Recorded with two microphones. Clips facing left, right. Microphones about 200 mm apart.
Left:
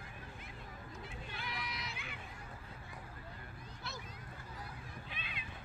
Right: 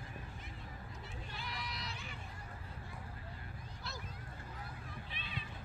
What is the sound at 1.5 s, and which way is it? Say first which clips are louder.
Run: even; centre (ahead or behind).